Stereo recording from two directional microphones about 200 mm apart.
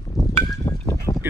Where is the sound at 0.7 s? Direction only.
20° left (ahead or behind).